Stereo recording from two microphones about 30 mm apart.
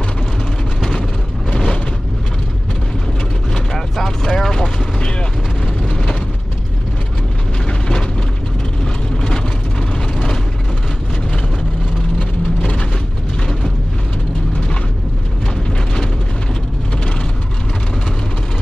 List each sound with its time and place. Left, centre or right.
1.5 s vehicle: left
3.9 s a sound: centre
4.4 s vehicle: centre
9.1 s vehicle: left
12.2 s vehicle: left